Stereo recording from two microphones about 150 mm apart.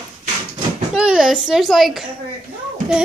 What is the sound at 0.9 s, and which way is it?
Speech, 5° right (ahead or behind).